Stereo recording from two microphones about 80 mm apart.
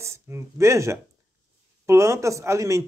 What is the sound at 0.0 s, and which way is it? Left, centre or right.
Speech, right.